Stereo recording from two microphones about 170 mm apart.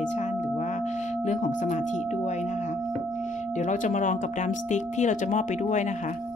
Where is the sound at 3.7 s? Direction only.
50° left (ahead or behind).